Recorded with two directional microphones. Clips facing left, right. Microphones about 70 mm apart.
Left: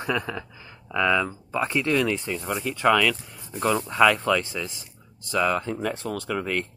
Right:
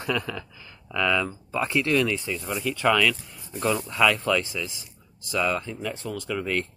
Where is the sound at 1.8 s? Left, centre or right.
Left.